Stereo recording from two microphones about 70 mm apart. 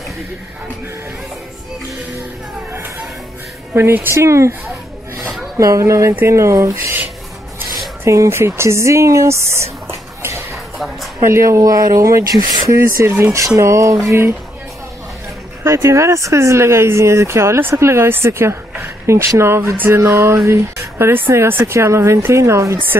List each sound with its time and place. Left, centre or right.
3.7 s speech: right
5.6 s speech: right
8.0 s speech: right
10.5 s a sound: centre
11.1 s speech: right
12.7 s speech: right
15.6 s speech: right